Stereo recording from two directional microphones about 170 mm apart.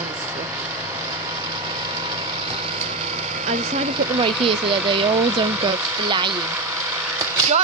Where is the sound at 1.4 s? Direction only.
25° right (ahead or behind).